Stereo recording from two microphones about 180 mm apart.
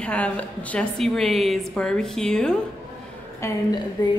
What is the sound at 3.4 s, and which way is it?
Speech, 25° left (ahead or behind).